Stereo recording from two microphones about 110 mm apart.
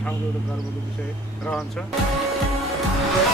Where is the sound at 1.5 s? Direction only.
5° left (ahead or behind).